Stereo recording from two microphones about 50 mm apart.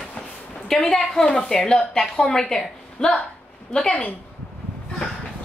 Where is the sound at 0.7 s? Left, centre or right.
Centre.